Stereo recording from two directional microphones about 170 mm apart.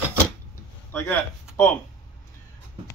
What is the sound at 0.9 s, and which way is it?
Speech, 15° left (ahead or behind).